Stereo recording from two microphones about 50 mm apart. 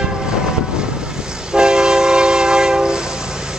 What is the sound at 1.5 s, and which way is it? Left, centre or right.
Train, centre.